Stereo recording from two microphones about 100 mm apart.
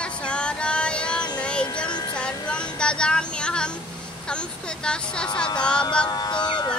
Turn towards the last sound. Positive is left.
turn(degrees=50)  # may be behind; listen again after turning